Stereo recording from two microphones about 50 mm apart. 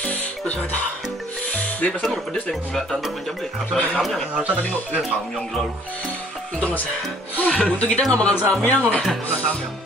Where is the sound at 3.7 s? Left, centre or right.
Left.